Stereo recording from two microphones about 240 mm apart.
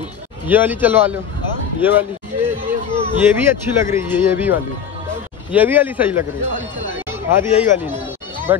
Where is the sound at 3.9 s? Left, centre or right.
Centre.